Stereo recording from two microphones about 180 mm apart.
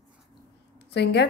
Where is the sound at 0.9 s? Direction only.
70° left (ahead or behind).